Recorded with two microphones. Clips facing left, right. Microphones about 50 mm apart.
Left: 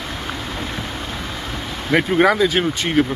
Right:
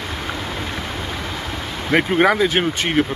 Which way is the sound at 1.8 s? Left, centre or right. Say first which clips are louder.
Even; centre.